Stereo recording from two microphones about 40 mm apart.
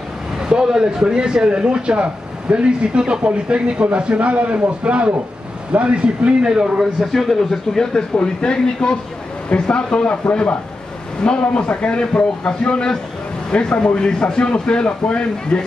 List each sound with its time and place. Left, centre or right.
0.4 s a man's voice: centre
6.4 s speech: centre
7.0 s speech: centre
7.8 s a man's voice: centre